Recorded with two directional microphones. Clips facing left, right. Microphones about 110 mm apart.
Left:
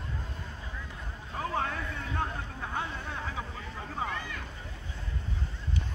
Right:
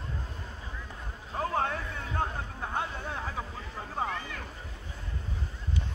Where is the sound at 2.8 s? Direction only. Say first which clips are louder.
Right 2 dB; 40° right (ahead or behind).